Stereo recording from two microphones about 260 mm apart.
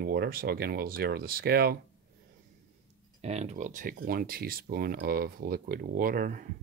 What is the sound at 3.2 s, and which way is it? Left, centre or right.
Speech, right.